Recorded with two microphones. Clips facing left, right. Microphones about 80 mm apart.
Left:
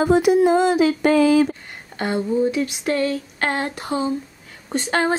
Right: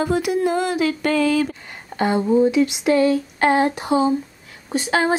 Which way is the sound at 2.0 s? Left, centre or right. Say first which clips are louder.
Right 3 dB; centre.